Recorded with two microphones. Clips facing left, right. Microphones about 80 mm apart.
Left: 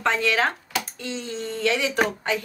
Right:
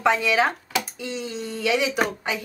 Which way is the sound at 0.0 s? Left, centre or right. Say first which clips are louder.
Right 2 dB; centre.